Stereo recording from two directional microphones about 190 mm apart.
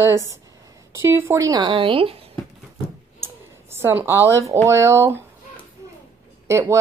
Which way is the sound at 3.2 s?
15° right (ahead or behind).